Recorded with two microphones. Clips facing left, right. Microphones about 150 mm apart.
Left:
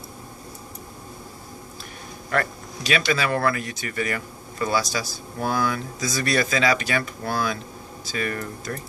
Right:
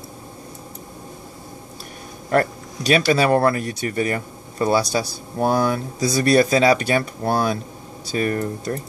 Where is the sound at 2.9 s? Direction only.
35° right (ahead or behind).